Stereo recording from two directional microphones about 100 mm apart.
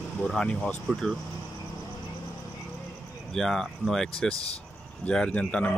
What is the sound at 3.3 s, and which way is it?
Speech, 5° left (ahead or behind).